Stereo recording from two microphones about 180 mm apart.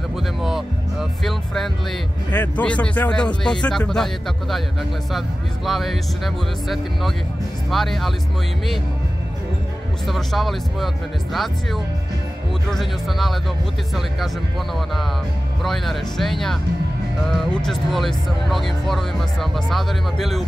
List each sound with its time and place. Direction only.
0.4 s music: centre (ahead or behind)
1.2 s speech: centre (ahead or behind)
5.7 s speech: centre (ahead or behind)
10.0 s speech: centre (ahead or behind)
15.6 s speech: centre (ahead or behind)